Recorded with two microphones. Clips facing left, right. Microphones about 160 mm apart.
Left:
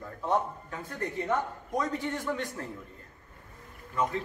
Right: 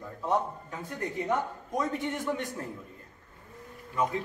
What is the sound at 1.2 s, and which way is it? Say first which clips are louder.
A man's voice: even; 15° right (ahead or behind).